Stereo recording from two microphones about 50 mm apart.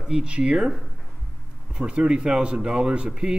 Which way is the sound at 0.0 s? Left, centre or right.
Centre.